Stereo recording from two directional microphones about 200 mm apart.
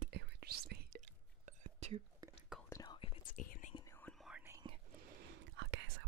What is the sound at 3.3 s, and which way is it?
Whispering, 40° left (ahead or behind).